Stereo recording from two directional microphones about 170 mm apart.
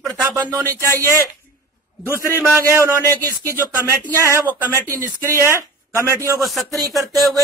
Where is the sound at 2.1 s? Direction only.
15° left (ahead or behind).